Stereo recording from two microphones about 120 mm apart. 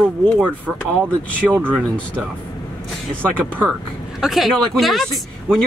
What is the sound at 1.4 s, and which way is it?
Speech, 15° right (ahead or behind).